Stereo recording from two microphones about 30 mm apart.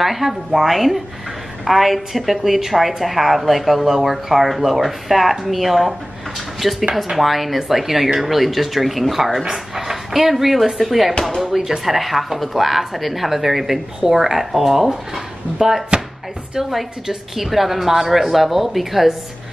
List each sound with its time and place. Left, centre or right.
0.0 s speech: centre
9.8 s dog: centre
10.3 s speech: centre
11.4 s speech: centre
17.1 s speech: centre